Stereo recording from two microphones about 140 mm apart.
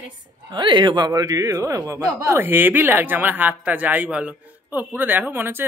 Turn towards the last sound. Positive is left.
turn(degrees=-15)  # may be behind; listen again after turning